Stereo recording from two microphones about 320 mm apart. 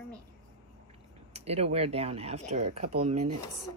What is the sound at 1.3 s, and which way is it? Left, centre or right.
Speech, centre.